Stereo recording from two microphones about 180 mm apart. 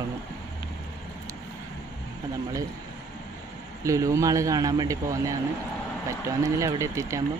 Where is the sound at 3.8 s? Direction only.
15° right (ahead or behind).